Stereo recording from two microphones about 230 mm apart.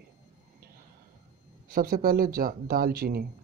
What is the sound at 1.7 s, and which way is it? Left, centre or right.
Speech, right.